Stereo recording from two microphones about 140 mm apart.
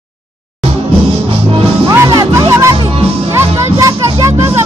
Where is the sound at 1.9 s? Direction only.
25° right (ahead or behind).